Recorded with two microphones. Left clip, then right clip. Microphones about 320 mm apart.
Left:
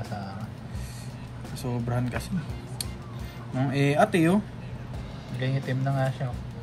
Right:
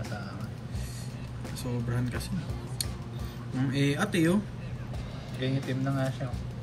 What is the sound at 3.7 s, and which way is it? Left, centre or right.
Speech, centre.